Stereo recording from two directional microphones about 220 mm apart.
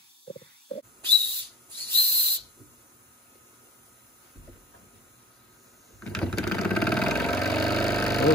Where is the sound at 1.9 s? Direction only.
10° left (ahead or behind).